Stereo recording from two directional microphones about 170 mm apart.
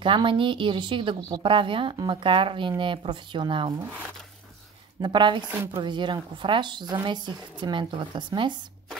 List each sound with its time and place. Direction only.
0.0 s speech: 30° right (ahead or behind)
5.0 s speech: 25° right (ahead or behind)
5.5 s speech: 15° right (ahead or behind)
5.8 s speech: 25° right (ahead or behind)